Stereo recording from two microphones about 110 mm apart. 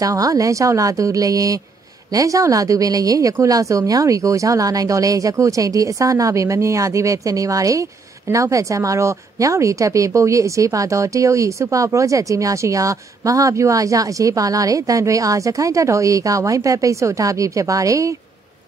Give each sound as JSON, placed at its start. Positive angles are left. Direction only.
{"t": 0.0, "sound": "a woman's voice", "side_deg": -30}